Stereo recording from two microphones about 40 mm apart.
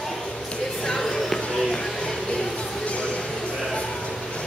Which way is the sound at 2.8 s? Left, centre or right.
Left.